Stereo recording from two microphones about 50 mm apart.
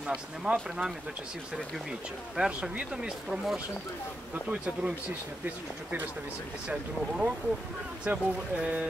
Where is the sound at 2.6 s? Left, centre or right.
Centre.